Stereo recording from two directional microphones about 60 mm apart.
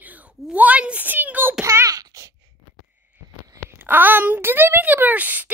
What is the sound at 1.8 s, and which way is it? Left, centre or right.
Wail, right.